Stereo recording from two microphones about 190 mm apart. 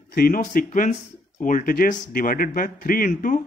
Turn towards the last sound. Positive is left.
turn(degrees=45)  # may be behind; listen again after turning